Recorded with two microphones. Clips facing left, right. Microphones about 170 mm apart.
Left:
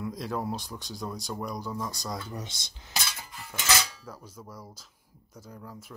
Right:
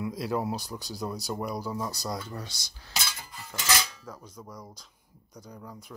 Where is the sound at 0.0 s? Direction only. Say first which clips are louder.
Right 2 dB; 5° right (ahead or behind).